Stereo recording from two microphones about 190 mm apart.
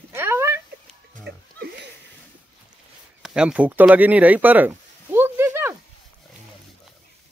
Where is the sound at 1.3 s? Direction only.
60° right (ahead or behind).